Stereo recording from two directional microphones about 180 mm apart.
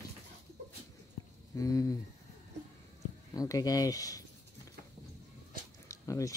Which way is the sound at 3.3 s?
20° left (ahead or behind).